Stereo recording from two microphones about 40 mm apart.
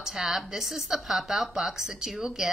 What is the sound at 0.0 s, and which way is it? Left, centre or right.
A woman's voice, centre.